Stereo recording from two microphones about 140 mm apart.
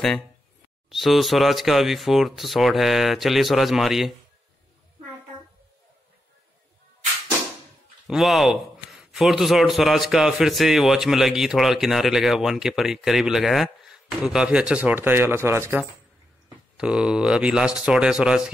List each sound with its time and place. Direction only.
0.8 s speech: centre (ahead or behind)
8.1 s speech: centre (ahead or behind)